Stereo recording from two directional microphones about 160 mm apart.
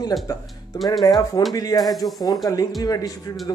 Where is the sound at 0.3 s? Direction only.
20° left (ahead or behind).